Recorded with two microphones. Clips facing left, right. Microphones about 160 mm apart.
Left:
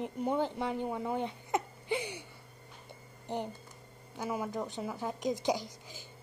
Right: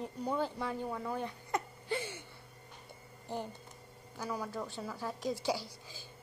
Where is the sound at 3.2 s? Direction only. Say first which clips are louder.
Left 3 dB; 20° left (ahead or behind).